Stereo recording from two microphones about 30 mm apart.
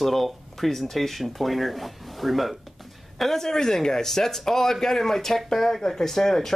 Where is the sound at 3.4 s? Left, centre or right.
Centre.